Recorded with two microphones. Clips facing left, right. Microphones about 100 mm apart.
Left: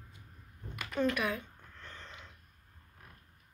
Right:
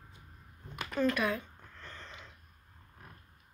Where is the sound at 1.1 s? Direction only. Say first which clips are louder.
Right 2 dB; 10° left (ahead or behind).